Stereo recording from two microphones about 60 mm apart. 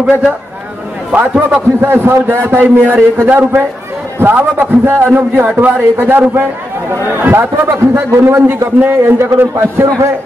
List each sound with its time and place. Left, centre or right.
1.1 s a man's voice: centre
1.8 s a man's voice: right
4.2 s a man's voice: right